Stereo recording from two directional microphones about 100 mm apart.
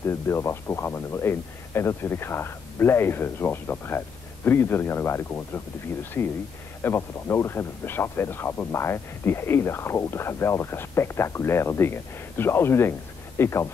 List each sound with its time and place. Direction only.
0.0 s speech: 25° left (ahead or behind)